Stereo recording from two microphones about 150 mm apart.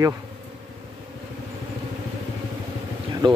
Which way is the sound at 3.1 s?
25° right (ahead or behind).